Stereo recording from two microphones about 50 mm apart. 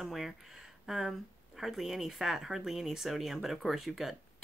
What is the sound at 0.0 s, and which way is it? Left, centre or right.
Speech, centre.